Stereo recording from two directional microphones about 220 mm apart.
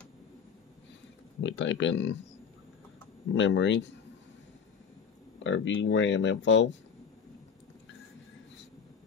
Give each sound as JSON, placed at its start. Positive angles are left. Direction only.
{"t": 1.4, "sound": "speech", "side_deg": 55}
{"t": 3.3, "sound": "speech", "side_deg": 55}
{"t": 5.4, "sound": "speech", "side_deg": 55}